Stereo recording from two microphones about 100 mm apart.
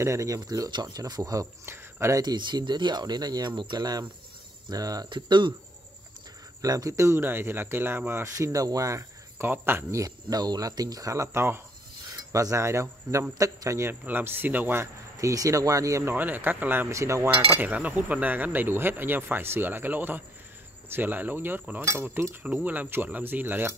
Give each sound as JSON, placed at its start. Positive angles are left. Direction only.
{"t": 0.0, "sound": "speech", "side_deg": -30}
{"t": 0.4, "sound": "speech", "side_deg": -45}
{"t": 2.2, "sound": "speech", "side_deg": -45}
{"t": 5.1, "sound": "speech", "side_deg": -50}
{"t": 6.6, "sound": "speech", "side_deg": -35}
{"t": 9.4, "sound": "speech", "side_deg": -20}
{"t": 12.1, "sound": "cutlery", "side_deg": -35}
{"t": 13.3, "sound": "speech", "side_deg": -35}
{"t": 15.1, "sound": "speech", "side_deg": -35}
{"t": 16.2, "sound": "speech", "side_deg": -20}
{"t": 16.9, "sound": "speech", "side_deg": -30}
{"t": 17.6, "sound": "speech", "side_deg": -15}